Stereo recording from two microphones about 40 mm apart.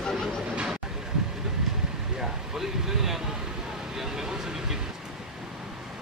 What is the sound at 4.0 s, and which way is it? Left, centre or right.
Vehicle, centre.